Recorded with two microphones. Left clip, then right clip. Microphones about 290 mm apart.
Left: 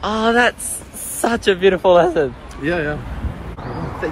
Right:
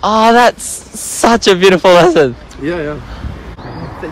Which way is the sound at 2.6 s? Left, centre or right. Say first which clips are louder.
Right 2 dB; centre.